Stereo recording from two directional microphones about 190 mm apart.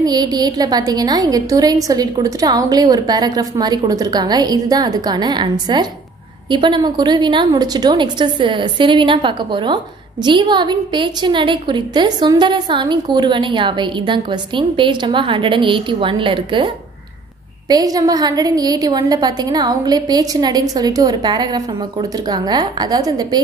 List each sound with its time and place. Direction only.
0.0 s a woman's voice: 20° right (ahead or behind)